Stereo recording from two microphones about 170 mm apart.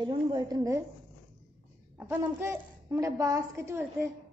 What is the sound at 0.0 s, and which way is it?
Speech, 25° right (ahead or behind).